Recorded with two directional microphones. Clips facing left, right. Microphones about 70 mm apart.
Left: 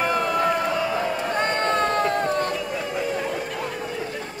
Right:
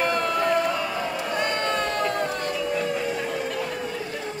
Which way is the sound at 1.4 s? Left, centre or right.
Left.